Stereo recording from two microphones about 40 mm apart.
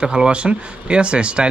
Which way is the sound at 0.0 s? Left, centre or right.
Right.